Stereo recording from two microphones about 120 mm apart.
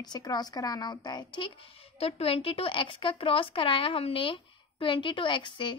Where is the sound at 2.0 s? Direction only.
55° left (ahead or behind).